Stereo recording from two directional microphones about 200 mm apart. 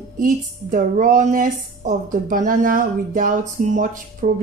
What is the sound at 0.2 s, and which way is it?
A woman's voice, 40° right (ahead or behind).